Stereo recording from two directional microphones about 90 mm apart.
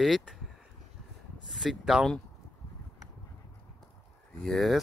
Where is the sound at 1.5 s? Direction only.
Centre (ahead or behind).